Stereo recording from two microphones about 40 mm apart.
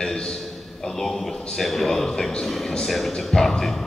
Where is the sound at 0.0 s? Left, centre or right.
Centre.